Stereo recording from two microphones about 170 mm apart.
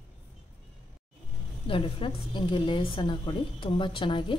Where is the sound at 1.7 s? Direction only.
30° left (ahead or behind).